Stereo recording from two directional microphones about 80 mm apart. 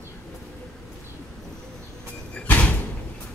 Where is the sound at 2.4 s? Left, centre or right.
Centre.